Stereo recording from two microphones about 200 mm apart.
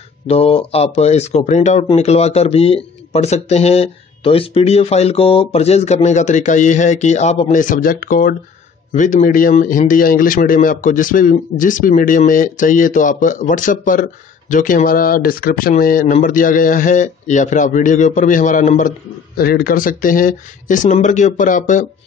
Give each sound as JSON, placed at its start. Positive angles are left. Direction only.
{"t": 0.3, "sound": "speech", "side_deg": 30}